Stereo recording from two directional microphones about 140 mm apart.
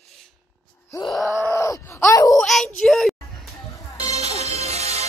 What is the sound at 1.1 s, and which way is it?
Groan, centre (ahead or behind).